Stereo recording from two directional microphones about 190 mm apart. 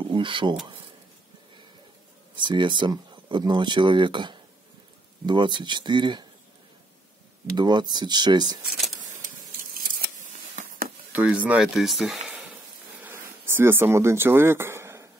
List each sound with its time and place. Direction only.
0.0 s speech: 25° right (ahead or behind)
2.3 s speech: 25° right (ahead or behind)
7.5 s speech: 25° right (ahead or behind)
10.5 s a sound: 50° right (ahead or behind)
11.1 s speech: 10° right (ahead or behind)
13.0 s a sound: 10° right (ahead or behind)